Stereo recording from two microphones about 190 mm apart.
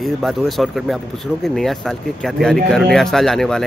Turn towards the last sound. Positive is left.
turn(degrees=0)  # may be behind; listen again after turning